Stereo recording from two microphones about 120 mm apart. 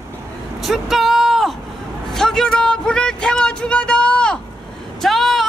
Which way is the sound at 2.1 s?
5° left (ahead or behind).